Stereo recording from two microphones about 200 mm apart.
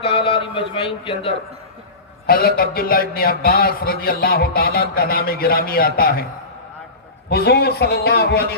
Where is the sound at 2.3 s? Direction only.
50° left (ahead or behind).